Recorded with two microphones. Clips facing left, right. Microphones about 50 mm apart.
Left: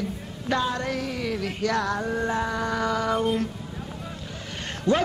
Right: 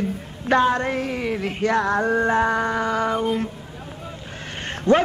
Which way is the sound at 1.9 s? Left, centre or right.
Right.